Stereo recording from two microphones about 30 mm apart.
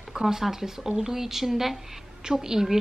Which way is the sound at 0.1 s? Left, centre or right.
Centre.